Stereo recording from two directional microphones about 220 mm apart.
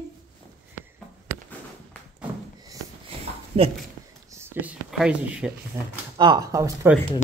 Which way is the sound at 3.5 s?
25° right (ahead or behind).